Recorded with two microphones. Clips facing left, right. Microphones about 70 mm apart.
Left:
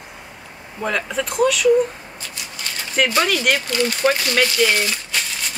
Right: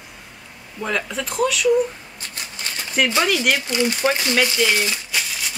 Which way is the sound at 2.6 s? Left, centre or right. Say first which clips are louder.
Even; right.